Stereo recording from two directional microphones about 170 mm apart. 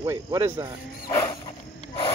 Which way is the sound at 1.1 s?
20° left (ahead or behind).